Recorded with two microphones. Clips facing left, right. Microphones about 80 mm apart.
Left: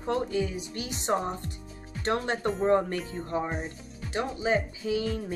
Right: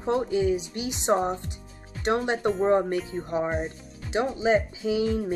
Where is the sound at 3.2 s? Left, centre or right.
Centre.